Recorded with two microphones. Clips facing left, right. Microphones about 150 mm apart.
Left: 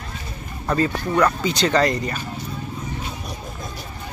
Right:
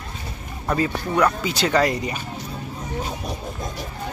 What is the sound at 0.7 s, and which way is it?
Speech, 5° right (ahead or behind).